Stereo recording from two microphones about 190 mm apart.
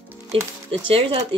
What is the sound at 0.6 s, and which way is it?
Speech, 30° right (ahead or behind).